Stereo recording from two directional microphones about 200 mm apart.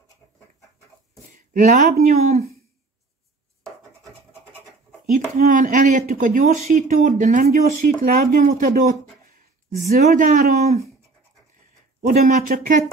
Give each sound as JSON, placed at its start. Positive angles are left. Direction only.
{"t": 1.3, "sound": "speech", "side_deg": -40}
{"t": 4.0, "sound": "rub", "side_deg": -10}
{"t": 5.1, "sound": "speech", "side_deg": -40}
{"t": 9.7, "sound": "speech", "side_deg": -35}
{"t": 12.1, "sound": "speech", "side_deg": -40}